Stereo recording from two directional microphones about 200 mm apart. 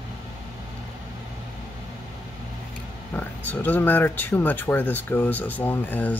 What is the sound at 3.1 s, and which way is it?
Speech, 10° left (ahead or behind).